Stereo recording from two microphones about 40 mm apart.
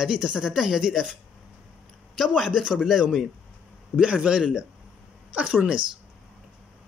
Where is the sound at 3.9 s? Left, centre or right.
Right.